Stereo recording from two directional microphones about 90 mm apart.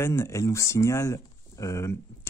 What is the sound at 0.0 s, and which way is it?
Speech, 30° left (ahead or behind).